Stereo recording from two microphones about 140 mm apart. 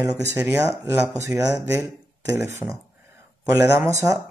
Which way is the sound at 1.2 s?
20° right (ahead or behind).